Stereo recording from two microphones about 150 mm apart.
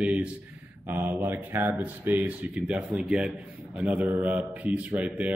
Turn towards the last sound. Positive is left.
turn(degrees=-10)  # may be behind; listen again after turning